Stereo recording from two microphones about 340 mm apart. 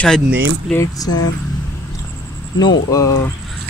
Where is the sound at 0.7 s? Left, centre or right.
Centre.